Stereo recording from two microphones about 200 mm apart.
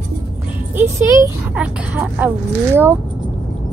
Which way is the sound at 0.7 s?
15° right (ahead or behind).